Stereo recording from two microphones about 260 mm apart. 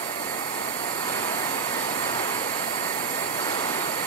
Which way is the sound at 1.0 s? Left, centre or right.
Centre.